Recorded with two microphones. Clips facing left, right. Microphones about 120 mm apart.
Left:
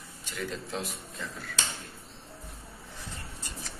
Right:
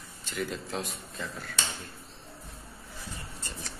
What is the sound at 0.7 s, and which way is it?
Speech, centre (ahead or behind).